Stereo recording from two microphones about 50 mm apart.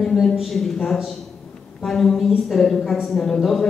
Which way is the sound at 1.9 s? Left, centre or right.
Centre.